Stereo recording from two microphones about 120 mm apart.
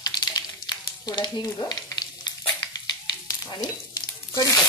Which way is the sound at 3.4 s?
30° left (ahead or behind).